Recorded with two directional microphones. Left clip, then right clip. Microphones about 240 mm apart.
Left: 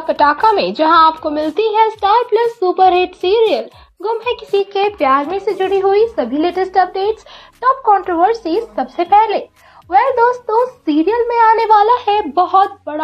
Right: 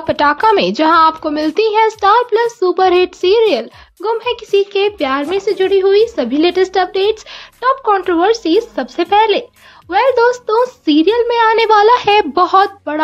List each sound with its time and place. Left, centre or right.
0.0 s speech: right
9.9 s a woman's voice: right
11.8 s a woman's voice: right
12.4 s speech: right